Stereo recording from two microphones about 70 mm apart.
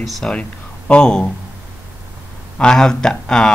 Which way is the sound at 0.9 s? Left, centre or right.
Centre.